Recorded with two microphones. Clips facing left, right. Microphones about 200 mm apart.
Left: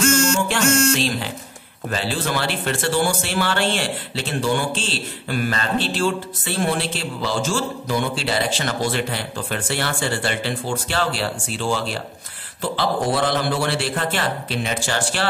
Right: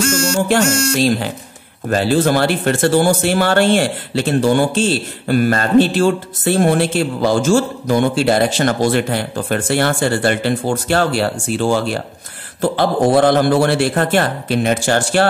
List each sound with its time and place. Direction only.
0.3 s speech: 40° right (ahead or behind)